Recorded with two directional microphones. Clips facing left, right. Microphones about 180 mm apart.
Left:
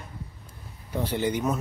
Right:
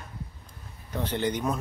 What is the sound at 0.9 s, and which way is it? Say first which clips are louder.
Speech: left 2 dB; 10° left (ahead or behind).